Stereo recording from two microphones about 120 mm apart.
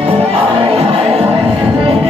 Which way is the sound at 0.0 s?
55° right (ahead or behind).